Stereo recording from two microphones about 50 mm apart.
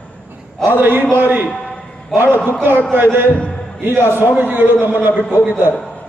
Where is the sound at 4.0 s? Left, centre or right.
Left.